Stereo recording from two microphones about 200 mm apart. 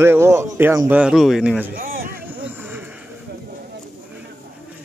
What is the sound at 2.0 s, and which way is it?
Vehicle, 10° right (ahead or behind).